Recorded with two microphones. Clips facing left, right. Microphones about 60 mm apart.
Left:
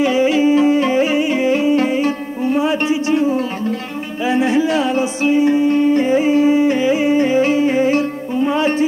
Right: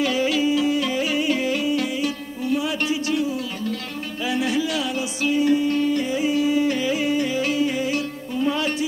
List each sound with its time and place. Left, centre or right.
0.0 s music: left